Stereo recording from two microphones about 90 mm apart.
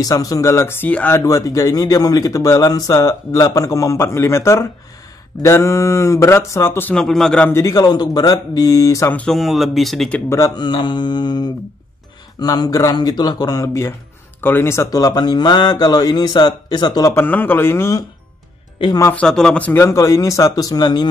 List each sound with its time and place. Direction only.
0.0 s speech: 45° left (ahead or behind); by 0.8 s 30° left (ahead or behind)
0.8 s speech: 15° left (ahead or behind)
1.1 s speech: 40° left (ahead or behind)
6.9 s speech: 5° left (ahead or behind)
7.6 s speech: 45° left (ahead or behind)
9.1 s speech: 10° left (ahead or behind)
9.4 s speech: centre (ahead or behind)
10.5 s mantra: 55° left (ahead or behind)
12.4 s speech: 45° left (ahead or behind)
14.4 s a man's voice: 25° left (ahead or behind)
14.9 s speech: 45° left (ahead or behind)
17.1 s a man's voice: 25° left (ahead or behind)
19.1 s speech: 10° left (ahead or behind)
19.7 s speech: 30° left (ahead or behind); by 21.1 s 45° left (ahead or behind)